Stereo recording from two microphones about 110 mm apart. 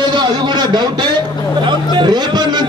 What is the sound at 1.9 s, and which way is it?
Speech, 40° right (ahead or behind).